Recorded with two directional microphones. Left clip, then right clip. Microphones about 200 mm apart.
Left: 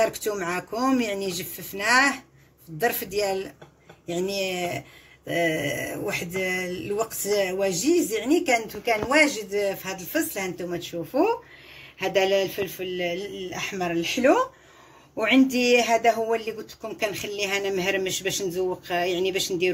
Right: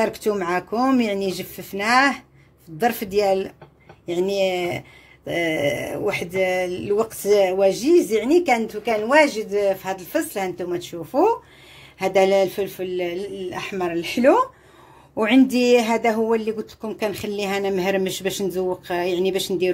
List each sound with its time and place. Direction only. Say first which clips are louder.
0.0 s speech: right 3 dB; 45° right (ahead or behind)